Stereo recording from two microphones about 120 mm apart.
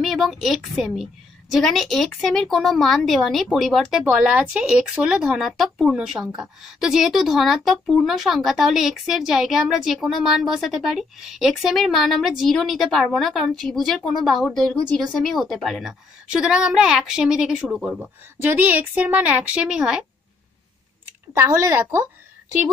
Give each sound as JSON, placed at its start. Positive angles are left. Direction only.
{"t": 0.0, "sound": "speech", "side_deg": 0}
{"t": 4.0, "sound": "a woman's voice", "side_deg": -10}
{"t": 21.3, "sound": "speech", "side_deg": -25}